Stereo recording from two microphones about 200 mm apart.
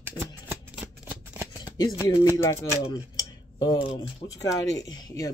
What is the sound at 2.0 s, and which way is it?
Speech, 15° left (ahead or behind).